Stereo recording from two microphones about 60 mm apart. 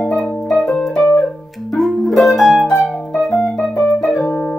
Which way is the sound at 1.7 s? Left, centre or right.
Centre.